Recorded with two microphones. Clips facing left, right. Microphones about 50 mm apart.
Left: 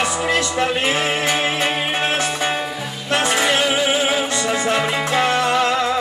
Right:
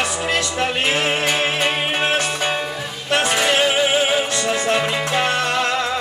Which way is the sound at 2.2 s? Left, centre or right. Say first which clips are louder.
Left 1 dB; centre.